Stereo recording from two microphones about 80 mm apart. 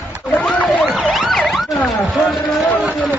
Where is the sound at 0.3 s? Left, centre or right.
Centre.